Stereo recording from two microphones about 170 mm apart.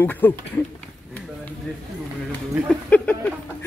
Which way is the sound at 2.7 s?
10° left (ahead or behind).